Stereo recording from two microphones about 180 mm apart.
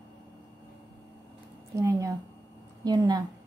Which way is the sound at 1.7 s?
15° right (ahead or behind).